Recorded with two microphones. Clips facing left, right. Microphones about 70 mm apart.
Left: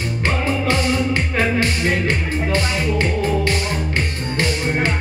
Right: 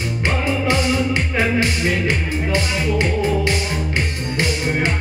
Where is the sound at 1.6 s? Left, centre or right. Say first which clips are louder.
Even; centre.